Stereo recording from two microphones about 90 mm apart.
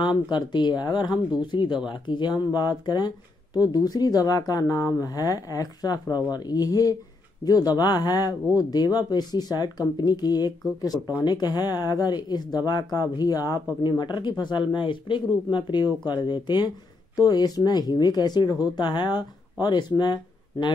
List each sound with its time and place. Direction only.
0.3 s speech: 55° left (ahead or behind)